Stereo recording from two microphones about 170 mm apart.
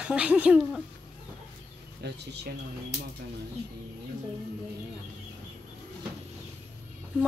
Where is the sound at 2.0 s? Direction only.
80° right.